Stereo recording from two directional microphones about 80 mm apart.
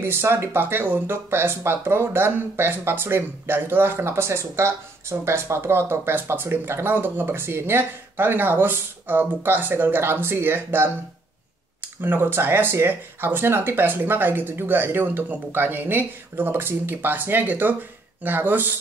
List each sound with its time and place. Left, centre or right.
0.0 s speech: right
12.0 s speech: right